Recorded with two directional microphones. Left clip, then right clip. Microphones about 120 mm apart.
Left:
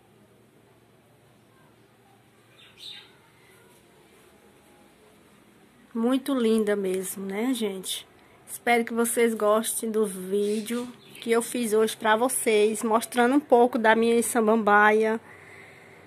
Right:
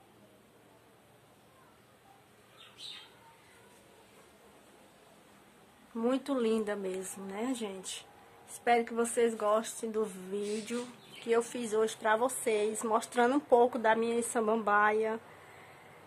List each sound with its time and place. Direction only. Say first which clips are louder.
5.9 s speech: left 6 dB; 25° left (ahead or behind)